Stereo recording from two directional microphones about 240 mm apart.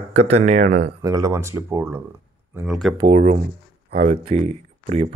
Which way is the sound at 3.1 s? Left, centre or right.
Right.